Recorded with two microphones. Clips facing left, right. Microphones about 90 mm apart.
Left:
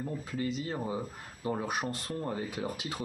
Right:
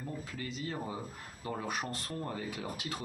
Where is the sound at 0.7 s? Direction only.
25° left (ahead or behind).